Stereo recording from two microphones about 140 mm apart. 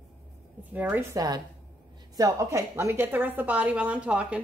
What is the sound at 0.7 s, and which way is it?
Speech, 15° right (ahead or behind).